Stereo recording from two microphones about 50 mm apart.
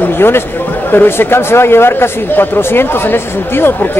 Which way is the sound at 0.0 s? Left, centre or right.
Left.